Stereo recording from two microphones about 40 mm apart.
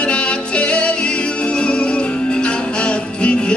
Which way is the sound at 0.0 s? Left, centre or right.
Left.